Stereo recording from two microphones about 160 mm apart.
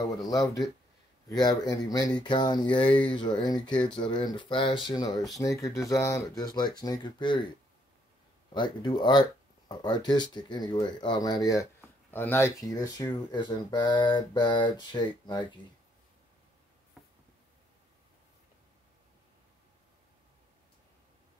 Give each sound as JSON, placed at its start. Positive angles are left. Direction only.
{"t": 0.0, "sound": "speech", "side_deg": 25}
{"t": 3.6, "sound": "speech", "side_deg": 5}
{"t": 3.9, "sound": "speech", "side_deg": 30}
{"t": 8.5, "sound": "speech", "side_deg": 25}
{"t": 12.1, "sound": "speech", "side_deg": 15}